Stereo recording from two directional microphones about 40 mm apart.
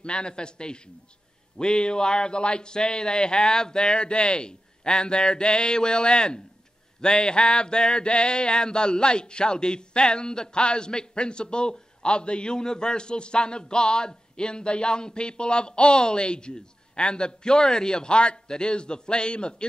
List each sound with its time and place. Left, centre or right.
0.0 s mantra: left